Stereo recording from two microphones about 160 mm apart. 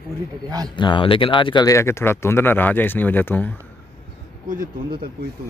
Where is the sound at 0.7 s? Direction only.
30° left (ahead or behind); by 3.5 s 10° left (ahead or behind).